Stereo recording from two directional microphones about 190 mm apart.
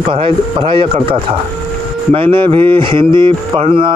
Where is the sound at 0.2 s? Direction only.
30° right (ahead or behind).